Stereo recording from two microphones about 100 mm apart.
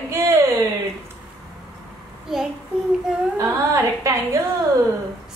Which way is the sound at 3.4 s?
30° right (ahead or behind).